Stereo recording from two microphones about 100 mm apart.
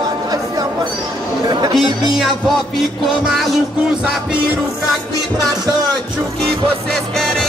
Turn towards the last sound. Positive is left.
turn(degrees=5)  # may be behind; listen again after turning